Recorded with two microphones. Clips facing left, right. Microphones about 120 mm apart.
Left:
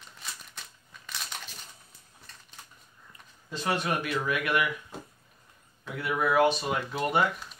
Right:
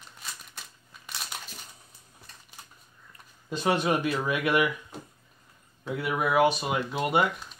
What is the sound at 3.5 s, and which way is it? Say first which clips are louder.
Speech: right 4 dB; 20° right (ahead or behind).